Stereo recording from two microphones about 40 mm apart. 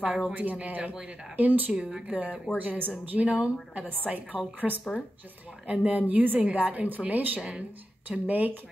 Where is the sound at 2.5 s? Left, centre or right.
Right.